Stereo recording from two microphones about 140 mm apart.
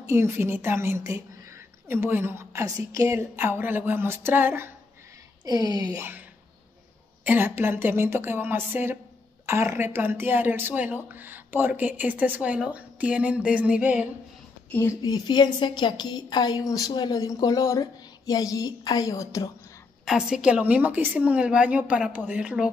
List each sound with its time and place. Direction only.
0.0 s a woman's voice: 20° right (ahead or behind)
5.4 s speech: 30° right (ahead or behind)
7.2 s a woman's voice: 15° right (ahead or behind)
14.7 s a woman's voice: 15° left (ahead or behind)
15.0 s a woman's voice: 30° left (ahead or behind)
20.1 s a woman's voice: 5° right (ahead or behind)